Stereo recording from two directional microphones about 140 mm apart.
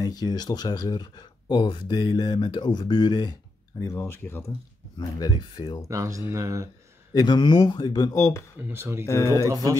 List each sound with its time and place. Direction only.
0.0 s speech: 30° left (ahead or behind)
3.8 s speech: 15° left (ahead or behind)
4.9 s speech: 30° left (ahead or behind)
5.9 s speech: 25° right (ahead or behind)
7.2 s speech: 30° left (ahead or behind)
8.5 s speech: 15° right (ahead or behind)
9.0 s speech: 20° left (ahead or behind)
9.5 s speech: 25° right (ahead or behind)